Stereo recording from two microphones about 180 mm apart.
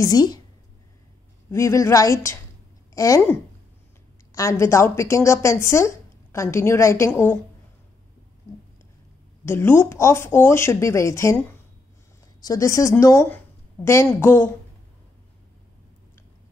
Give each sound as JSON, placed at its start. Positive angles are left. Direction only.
{"t": 0.0, "sound": "speech", "side_deg": 20}
{"t": 1.5, "sound": "a woman's voice", "side_deg": 15}
{"t": 9.4, "sound": "a woman's voice", "side_deg": 15}